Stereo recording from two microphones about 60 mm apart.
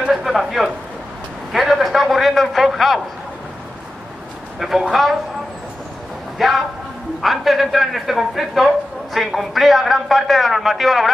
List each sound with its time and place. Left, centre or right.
0.1 s a man's voice: centre
4.6 s a man's voice: centre
6.3 s a man's voice: centre